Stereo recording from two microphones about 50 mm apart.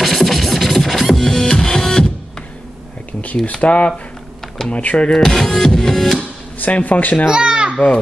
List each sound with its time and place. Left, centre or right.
0.0 s music: centre
3.1 s a sound: left
3.5 s speech: left
5.1 s music: centre
6.6 s a man's voice: left
7.2 s babbling: centre